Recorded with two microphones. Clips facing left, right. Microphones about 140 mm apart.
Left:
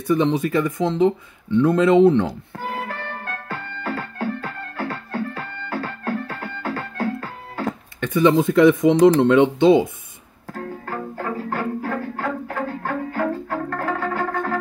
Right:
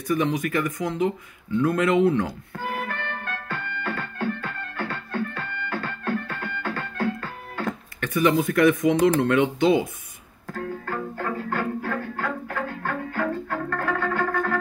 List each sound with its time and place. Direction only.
0.0 s speech: 25° left (ahead or behind)
3.1 s music: 35° left (ahead or behind)